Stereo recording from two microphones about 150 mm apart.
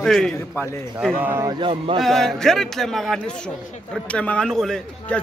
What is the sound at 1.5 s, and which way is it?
Speech, 35° right (ahead or behind).